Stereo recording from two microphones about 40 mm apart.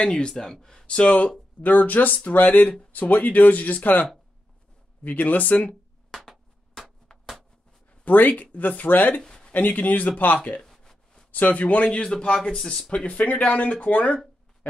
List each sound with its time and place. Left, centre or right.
0.0 s speech: left
0.3 s speech: centre
0.8 s speech: left
1.6 s speech: left
6.1 s a sound: centre
8.0 s speech: left
9.2 s a sound: centre
9.5 s speech: left; by 12.5 s centre
12.9 s speech: left